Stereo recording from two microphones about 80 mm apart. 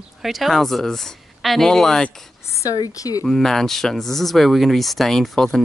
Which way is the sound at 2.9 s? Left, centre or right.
Left.